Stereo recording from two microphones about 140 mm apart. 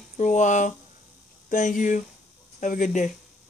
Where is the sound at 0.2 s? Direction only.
60° left (ahead or behind).